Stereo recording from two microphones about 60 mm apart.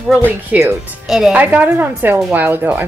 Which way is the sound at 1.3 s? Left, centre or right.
Right.